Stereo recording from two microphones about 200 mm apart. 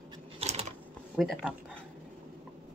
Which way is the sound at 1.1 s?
Centre (ahead or behind).